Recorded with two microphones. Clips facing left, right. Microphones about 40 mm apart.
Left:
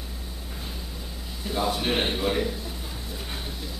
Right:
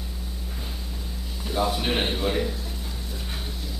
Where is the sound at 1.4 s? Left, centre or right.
Centre.